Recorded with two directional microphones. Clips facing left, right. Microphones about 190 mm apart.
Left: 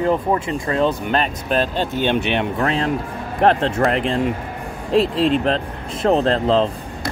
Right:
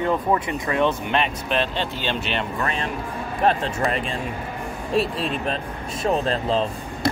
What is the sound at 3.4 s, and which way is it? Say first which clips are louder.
Speech: left 5 dB; 80° left.